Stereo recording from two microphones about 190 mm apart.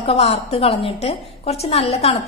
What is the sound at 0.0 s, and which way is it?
A woman's voice, 35° left (ahead or behind).